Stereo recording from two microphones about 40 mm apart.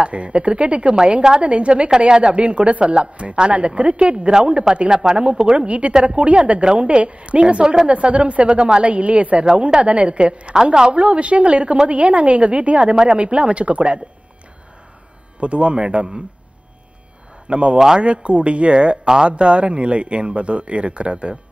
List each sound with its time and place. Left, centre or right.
0.0 s a woman's voice: right
9.5 s speech: centre
9.8 s speech: right
10.5 s a woman's voice: centre
10.9 s a woman's voice: right
12.9 s speech: centre
13.2 s speech: right
15.4 s speech: right
17.5 s speech: right
17.7 s a woman's voice: centre
18.0 s speech: right